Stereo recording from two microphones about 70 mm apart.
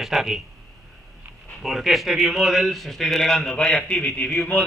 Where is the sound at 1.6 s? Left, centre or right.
Centre.